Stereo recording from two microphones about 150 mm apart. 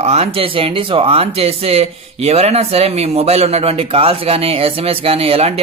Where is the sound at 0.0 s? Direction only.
45° right (ahead or behind).